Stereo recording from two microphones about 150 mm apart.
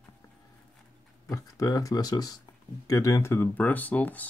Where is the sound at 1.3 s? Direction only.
25° left (ahead or behind).